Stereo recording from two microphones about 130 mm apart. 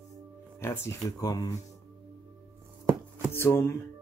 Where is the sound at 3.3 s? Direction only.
20° left (ahead or behind).